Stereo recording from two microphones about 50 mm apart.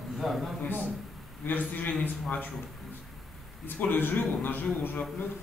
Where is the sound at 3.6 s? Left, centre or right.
Left.